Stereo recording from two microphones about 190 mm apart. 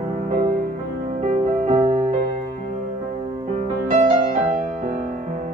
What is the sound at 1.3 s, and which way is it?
Music, 40° right (ahead or behind).